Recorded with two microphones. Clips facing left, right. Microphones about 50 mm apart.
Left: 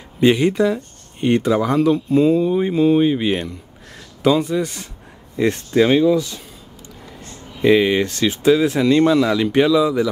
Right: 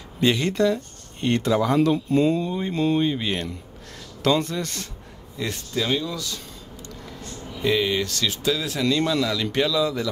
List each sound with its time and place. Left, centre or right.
0.2 s speech: centre
1.7 s speech: centre
5.3 s speech: left
7.6 s speech: left